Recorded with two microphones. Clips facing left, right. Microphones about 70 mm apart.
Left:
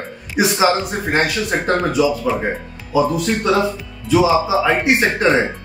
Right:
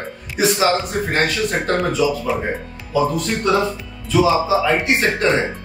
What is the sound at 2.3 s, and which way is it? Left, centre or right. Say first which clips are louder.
Speech: left 1 dB; centre.